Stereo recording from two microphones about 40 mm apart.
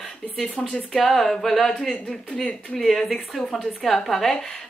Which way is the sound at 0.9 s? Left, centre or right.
Centre.